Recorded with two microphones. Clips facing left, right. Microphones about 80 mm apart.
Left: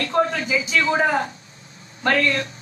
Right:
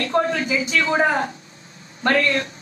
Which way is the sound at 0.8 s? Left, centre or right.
Right.